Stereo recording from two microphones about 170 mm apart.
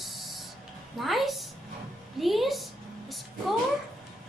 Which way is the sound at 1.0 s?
Centre (ahead or behind).